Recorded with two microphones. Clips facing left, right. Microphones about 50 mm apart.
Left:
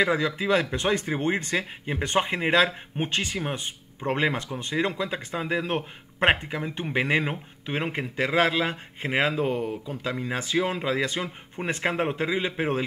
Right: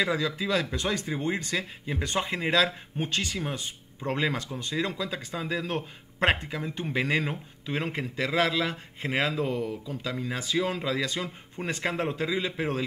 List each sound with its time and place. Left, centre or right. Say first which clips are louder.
0.0 s speech: left 4 dB; left